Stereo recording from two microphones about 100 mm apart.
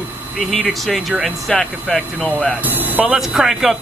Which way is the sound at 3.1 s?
5° right (ahead or behind).